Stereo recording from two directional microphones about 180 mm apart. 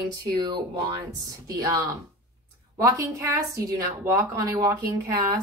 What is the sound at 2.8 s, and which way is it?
A woman's voice, 20° right (ahead or behind).